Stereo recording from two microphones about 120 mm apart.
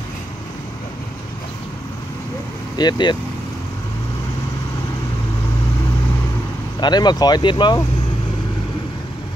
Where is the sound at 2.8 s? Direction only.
35° left (ahead or behind).